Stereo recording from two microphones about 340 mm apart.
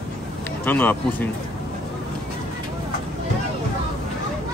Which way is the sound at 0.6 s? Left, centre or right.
Centre.